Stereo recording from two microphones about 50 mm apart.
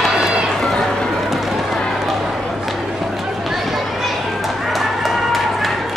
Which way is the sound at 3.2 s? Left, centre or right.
Centre.